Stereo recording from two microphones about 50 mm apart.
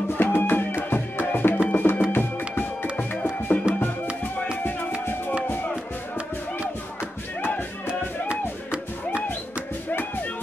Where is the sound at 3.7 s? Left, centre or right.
Centre.